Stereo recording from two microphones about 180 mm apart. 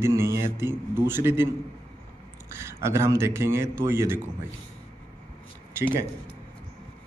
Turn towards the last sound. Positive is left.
turn(degrees=-15)  # may be behind; listen again after turning